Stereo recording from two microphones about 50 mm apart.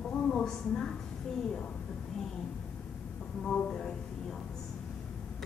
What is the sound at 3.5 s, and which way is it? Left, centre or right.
Speech, centre.